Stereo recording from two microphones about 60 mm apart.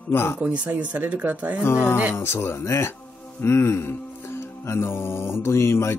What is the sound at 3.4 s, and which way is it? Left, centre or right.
Music, left.